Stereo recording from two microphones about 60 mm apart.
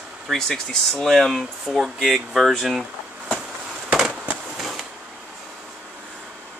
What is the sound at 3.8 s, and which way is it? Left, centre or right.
Fireworks, centre.